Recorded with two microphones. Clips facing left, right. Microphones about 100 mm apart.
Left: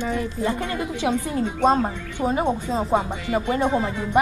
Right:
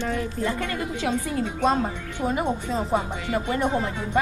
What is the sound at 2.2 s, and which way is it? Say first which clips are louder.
Speech: left 3 dB; 20° left (ahead or behind).